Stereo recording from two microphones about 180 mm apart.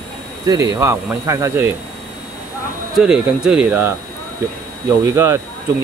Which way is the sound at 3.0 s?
5° right (ahead or behind).